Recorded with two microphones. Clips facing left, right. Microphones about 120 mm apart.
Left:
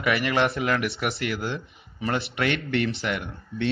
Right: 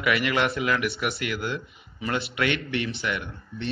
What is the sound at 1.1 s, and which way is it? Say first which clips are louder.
Speech: left 1 dB; 35° left (ahead or behind).